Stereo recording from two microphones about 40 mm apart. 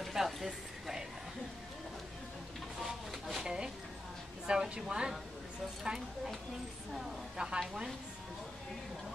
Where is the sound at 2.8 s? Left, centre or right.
Centre.